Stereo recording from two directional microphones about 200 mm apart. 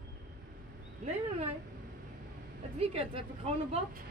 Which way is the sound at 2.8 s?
30° right (ahead or behind).